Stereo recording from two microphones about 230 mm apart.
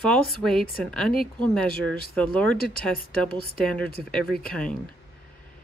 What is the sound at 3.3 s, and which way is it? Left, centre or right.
Speech, left.